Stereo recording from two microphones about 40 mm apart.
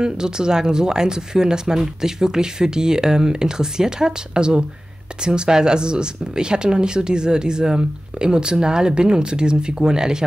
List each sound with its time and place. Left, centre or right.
0.0 s speech: centre